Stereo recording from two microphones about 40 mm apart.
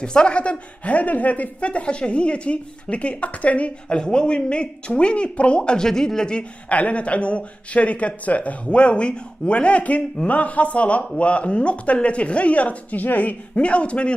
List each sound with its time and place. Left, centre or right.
0.0 s a woman's voice: left
3.9 s speech: left
5.8 s speech: centre
6.7 s a woman's voice: left
13.0 s a woman's voice: left
13.7 s speech: left